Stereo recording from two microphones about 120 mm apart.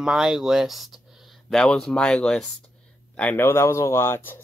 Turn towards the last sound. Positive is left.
turn(degrees=20)  # may be behind; listen again after turning